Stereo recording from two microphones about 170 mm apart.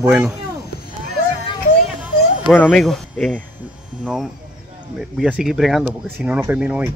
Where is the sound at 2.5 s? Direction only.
Centre (ahead or behind).